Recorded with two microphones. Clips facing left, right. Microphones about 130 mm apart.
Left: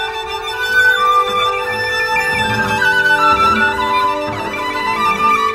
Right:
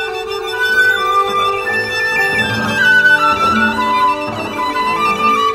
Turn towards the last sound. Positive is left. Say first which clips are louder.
# even
turn(degrees=50)  # may be behind; listen again after turning